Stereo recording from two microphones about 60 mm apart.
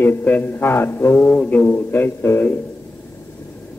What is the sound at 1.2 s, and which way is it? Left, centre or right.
Speech, centre.